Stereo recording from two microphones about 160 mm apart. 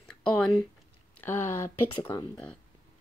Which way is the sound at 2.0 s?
25° left (ahead or behind).